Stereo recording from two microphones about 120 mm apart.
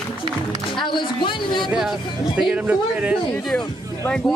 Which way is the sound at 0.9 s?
40° left (ahead or behind).